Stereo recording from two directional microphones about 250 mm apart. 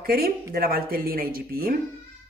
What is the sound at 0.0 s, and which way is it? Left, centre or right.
A woman's voice, right.